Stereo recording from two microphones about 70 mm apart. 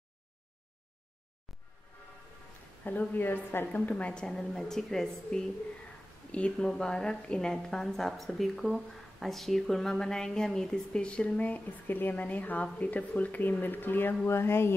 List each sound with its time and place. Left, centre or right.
2.8 s a woman's voice: left